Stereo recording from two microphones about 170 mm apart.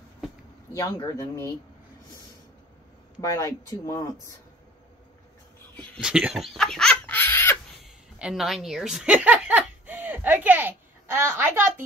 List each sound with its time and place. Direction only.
0.7 s speech: 20° left (ahead or behind)
3.2 s speech: 15° left (ahead or behind)
5.9 s fowl: 5° right (ahead or behind); by 7.5 s 15° left (ahead or behind)
7.8 s speech: 5° right (ahead or behind)